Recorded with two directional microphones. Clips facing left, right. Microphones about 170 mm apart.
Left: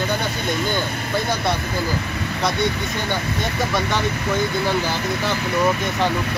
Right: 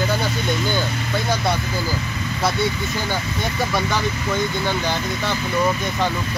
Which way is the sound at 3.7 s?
Centre (ahead or behind).